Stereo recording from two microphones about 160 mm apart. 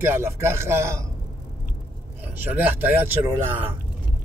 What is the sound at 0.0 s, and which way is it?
Speech, 15° right (ahead or behind).